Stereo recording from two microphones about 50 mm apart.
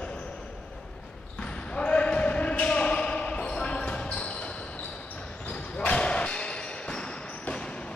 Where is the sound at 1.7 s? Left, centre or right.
Left.